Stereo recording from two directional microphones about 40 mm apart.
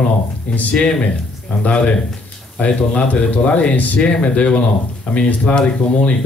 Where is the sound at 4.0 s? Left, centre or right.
Left.